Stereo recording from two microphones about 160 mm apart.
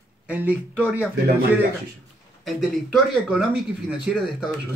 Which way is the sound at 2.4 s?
5° right (ahead or behind).